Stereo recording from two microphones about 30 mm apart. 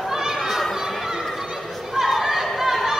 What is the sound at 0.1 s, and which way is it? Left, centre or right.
Children playing, centre.